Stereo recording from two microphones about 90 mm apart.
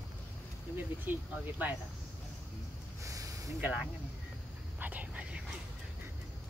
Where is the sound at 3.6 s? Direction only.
10° right (ahead or behind).